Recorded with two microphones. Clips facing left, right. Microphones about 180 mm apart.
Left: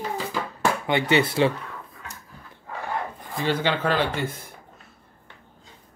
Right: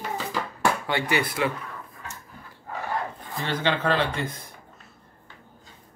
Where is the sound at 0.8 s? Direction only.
20° left (ahead or behind).